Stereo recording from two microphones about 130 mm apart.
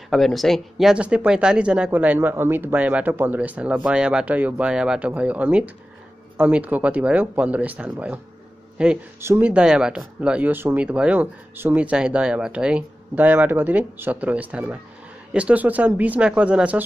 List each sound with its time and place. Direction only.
0.1 s speech: centre (ahead or behind)